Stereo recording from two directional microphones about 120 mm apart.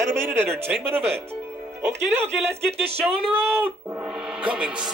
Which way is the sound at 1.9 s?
70° right (ahead or behind).